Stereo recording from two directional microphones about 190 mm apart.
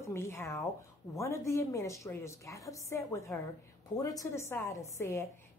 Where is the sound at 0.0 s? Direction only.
15° left (ahead or behind).